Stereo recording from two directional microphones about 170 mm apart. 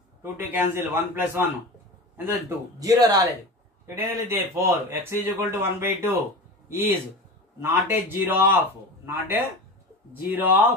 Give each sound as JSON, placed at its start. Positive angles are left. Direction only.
{"t": 0.2, "sound": "speech", "side_deg": -10}
{"t": 2.8, "sound": "speech", "side_deg": -20}